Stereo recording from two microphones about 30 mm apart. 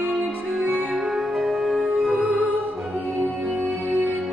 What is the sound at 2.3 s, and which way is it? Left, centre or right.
Music, right.